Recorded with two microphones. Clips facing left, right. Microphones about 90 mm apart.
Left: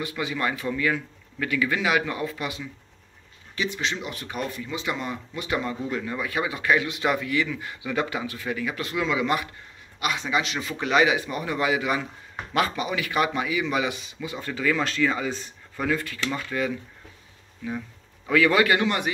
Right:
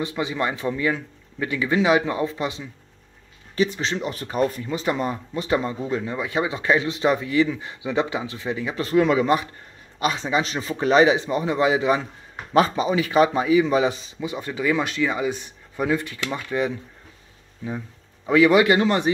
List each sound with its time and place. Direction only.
0.0 s speech: 25° right (ahead or behind)
8.9 s speech: 45° right (ahead or behind)
14.3 s a man's voice: 20° right (ahead or behind)
18.8 s speech: 30° right (ahead or behind)